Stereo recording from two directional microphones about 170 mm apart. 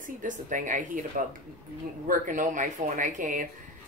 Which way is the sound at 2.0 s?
50° right (ahead or behind).